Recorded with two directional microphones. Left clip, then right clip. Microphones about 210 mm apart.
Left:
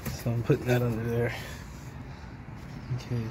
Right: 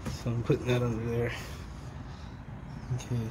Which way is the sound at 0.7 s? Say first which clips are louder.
Left 2 dB; 25° left (ahead or behind).